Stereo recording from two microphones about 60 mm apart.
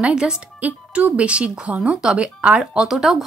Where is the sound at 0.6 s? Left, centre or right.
Right.